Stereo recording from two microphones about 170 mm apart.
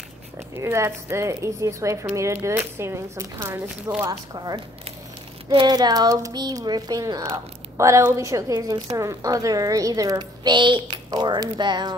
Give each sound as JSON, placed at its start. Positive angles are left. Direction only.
{"t": 0.6, "sound": "speech", "side_deg": -15}